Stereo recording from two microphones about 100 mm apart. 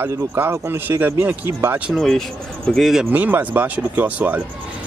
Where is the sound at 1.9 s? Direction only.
Centre (ahead or behind).